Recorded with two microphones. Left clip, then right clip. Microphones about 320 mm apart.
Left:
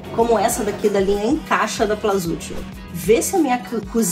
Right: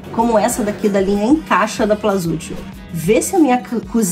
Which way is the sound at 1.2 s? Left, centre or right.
Right.